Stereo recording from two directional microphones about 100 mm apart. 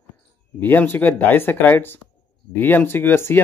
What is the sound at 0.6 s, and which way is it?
Speech, 20° left (ahead or behind).